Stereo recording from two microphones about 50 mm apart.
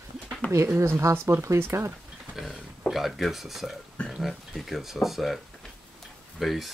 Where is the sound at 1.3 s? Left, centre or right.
Right.